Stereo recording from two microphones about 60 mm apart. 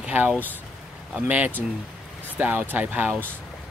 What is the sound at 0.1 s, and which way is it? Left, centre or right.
Speech, right.